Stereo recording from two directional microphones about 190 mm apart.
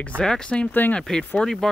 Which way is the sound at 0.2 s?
5° left (ahead or behind).